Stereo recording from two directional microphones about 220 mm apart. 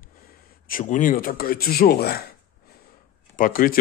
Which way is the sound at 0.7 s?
35° left (ahead or behind).